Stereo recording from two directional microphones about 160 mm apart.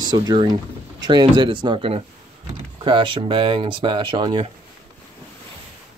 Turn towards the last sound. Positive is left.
turn(degrees=-30)  # may be behind; listen again after turning